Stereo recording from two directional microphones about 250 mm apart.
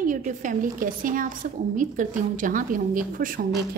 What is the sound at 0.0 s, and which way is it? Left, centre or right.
A woman's voice, right.